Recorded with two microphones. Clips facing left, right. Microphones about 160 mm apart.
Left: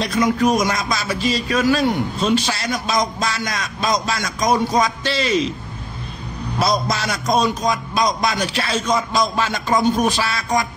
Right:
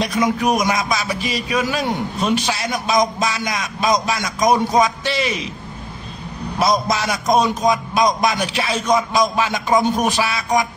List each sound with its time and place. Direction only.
0.0 s a man's voice: 15° right (ahead or behind)
6.6 s a man's voice: 15° right (ahead or behind)